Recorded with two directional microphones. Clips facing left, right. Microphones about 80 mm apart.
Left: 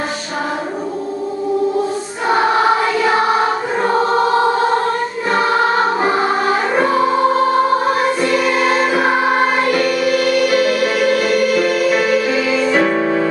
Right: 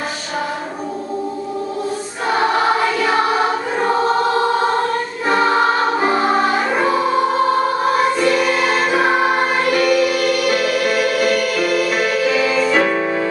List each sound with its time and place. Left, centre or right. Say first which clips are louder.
12.6 s music: left 1 dB; centre
12.9 s music: left 3 dB; left